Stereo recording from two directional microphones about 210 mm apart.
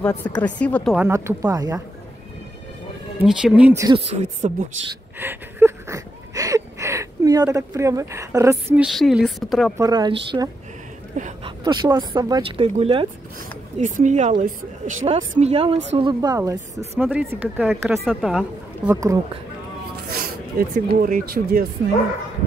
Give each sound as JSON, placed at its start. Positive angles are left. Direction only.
{"t": 0.0, "sound": "speech", "side_deg": 10}
{"t": 0.9, "sound": "speech", "side_deg": -10}
{"t": 3.2, "sound": "speech", "side_deg": -5}
{"t": 3.9, "sound": "speech", "side_deg": -30}
{"t": 5.2, "sound": "a sound", "side_deg": -10}
{"t": 9.8, "sound": "speech", "side_deg": -20}
{"t": 11.4, "sound": "speech", "side_deg": -20}
{"t": 13.7, "sound": "a woman's voice", "side_deg": -35}
{"t": 18.9, "sound": "speech", "side_deg": -15}
{"t": 20.1, "sound": "music", "side_deg": -45}
{"t": 21.0, "sound": "speech", "side_deg": -45}